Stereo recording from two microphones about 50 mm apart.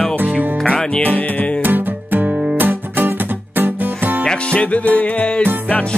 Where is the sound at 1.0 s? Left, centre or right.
Left.